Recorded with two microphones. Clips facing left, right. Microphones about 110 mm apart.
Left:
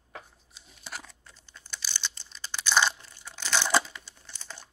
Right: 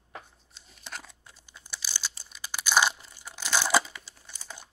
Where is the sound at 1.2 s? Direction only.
10° right (ahead or behind).